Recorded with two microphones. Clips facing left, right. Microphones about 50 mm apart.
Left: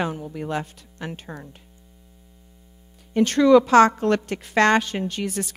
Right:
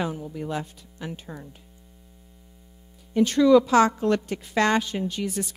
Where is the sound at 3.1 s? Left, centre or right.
Left.